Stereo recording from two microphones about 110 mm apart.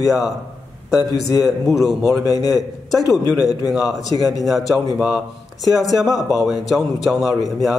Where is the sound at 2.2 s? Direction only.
35° left (ahead or behind).